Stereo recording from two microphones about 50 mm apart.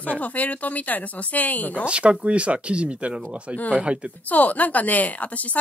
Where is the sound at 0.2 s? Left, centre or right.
Left.